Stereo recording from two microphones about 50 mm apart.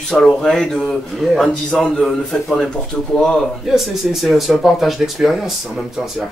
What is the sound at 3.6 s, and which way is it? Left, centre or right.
Speech, centre.